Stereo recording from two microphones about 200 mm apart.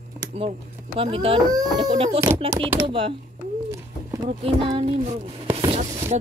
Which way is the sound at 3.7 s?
20° right (ahead or behind).